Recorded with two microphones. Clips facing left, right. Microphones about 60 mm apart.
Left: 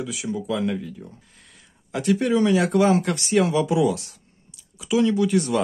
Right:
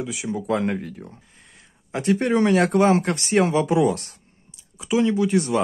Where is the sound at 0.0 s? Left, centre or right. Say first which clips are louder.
Right 1 dB; right.